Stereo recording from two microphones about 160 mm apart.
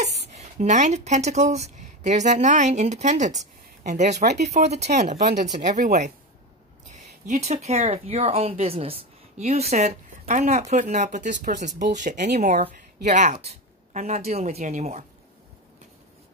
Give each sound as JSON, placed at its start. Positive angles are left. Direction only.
{"t": 0.0, "sound": "speech", "side_deg": -45}
{"t": 6.9, "sound": "speech", "side_deg": -45}